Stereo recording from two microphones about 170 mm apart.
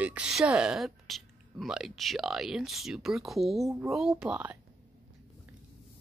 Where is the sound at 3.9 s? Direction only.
5° right (ahead or behind).